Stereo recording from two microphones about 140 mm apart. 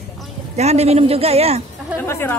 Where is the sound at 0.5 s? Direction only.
50° right (ahead or behind).